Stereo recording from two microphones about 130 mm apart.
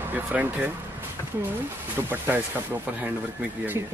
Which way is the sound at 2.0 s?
15° right (ahead or behind).